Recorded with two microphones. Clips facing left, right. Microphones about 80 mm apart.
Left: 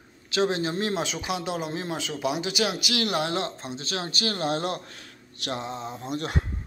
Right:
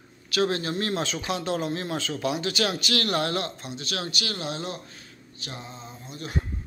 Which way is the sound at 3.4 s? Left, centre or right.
Left.